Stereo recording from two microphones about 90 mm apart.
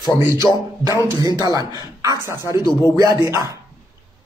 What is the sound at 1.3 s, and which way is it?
A man's voice, 40° right (ahead or behind).